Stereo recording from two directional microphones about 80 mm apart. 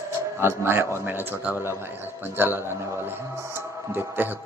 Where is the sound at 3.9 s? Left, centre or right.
Right.